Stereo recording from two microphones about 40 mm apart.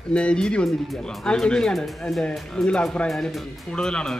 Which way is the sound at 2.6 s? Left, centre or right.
Left.